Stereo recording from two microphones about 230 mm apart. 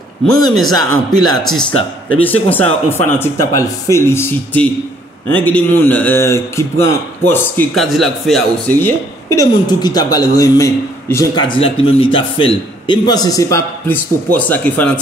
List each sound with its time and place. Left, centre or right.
0.7 s speech: right
1.3 s speech: centre